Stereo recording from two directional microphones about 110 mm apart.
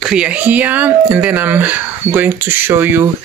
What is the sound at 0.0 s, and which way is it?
Speech, 10° right (ahead or behind).